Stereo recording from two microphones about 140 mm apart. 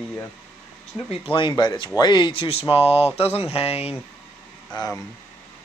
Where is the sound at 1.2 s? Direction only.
35° left (ahead or behind).